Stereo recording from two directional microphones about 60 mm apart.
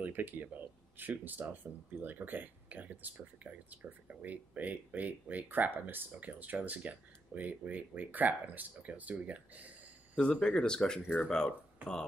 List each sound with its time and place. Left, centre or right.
0.0 s speech: right
10.1 s speech: centre